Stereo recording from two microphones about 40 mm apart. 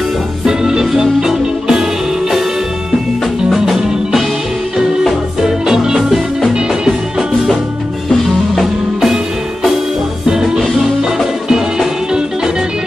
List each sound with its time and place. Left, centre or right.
0.5 s music: centre
3.5 s music: centre
10.2 s music: centre